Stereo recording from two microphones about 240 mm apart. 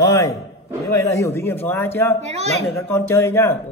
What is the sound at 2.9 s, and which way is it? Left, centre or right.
Speech, centre.